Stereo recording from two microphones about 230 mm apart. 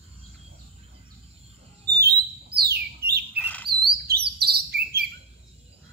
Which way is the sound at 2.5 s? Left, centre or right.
Right.